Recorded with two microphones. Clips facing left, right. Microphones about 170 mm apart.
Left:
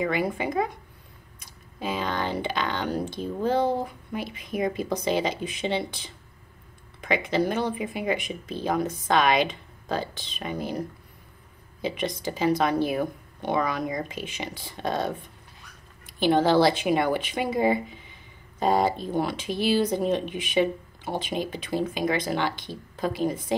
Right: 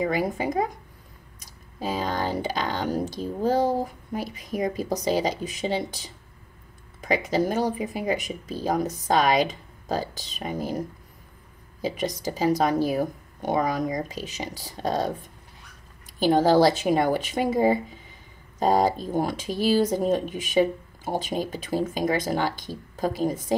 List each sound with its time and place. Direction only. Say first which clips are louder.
0.0 s speech: right 1 dB; 40° right (ahead or behind)
11.8 s speech: right 1 dB; 40° right (ahead or behind)
16.2 s speech: right 2 dB; 40° right (ahead or behind)